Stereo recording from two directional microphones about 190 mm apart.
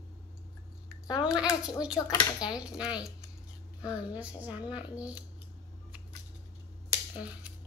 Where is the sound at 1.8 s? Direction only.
5° right (ahead or behind).